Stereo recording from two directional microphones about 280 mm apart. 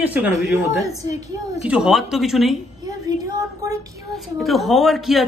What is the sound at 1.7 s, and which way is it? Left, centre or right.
Speech, centre.